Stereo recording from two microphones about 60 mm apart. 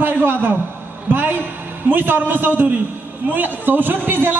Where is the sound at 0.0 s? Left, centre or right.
Right.